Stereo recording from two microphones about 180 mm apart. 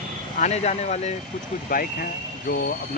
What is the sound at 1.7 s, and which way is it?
Speech, 50° left (ahead or behind).